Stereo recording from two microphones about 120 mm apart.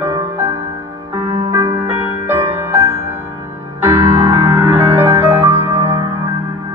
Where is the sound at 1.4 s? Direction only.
35° right (ahead or behind).